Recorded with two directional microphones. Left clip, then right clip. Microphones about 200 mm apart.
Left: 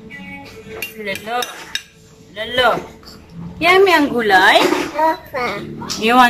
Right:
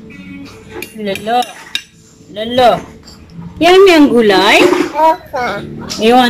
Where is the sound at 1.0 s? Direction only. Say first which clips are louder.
Right 8 dB; 20° right (ahead or behind).